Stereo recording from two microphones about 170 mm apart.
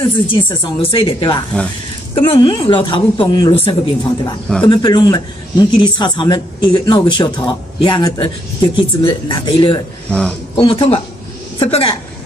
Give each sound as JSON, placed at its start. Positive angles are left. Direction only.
{"t": 0.0, "sound": "a woman's voice", "side_deg": 30}
{"t": 10.1, "sound": "speech", "side_deg": 5}
{"t": 10.6, "sound": "speech", "side_deg": 30}